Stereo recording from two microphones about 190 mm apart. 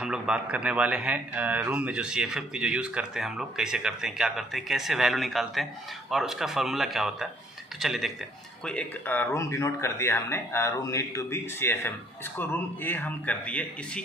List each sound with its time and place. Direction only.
0.0 s a man's voice: 5° right (ahead or behind)